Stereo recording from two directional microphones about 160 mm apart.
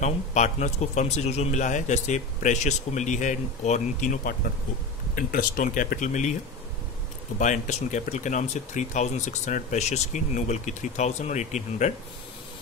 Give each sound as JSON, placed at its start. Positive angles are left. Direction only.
{"t": 0.0, "sound": "speech", "side_deg": 45}
{"t": 7.3, "sound": "speech", "side_deg": 50}